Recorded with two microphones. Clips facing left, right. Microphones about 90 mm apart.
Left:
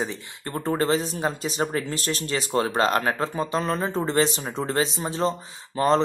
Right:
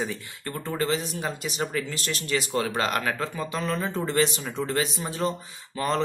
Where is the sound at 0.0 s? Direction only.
30° left (ahead or behind).